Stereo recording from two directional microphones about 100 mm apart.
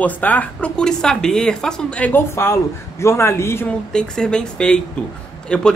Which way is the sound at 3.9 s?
10° left (ahead or behind).